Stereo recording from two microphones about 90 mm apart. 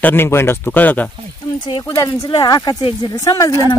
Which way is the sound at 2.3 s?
50° left (ahead or behind).